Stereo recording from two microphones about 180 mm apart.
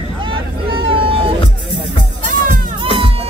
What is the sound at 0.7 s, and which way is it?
Vehicle, 30° right (ahead or behind).